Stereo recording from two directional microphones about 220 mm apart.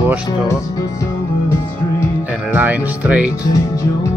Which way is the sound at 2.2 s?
5° right (ahead or behind).